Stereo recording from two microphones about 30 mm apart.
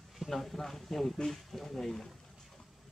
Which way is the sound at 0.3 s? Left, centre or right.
Centre.